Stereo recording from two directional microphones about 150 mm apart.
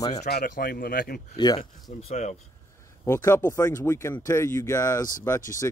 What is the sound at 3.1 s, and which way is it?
Speech, 15° left (ahead or behind).